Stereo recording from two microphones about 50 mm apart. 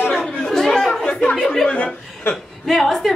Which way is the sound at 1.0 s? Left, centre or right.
Centre.